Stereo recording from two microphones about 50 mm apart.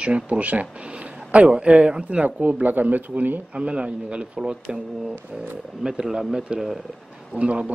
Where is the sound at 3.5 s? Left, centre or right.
Right.